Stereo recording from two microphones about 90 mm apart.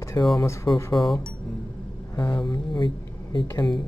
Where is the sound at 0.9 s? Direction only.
Centre (ahead or behind).